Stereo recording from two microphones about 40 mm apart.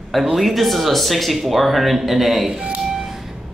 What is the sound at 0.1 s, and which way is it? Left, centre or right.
Speech, centre.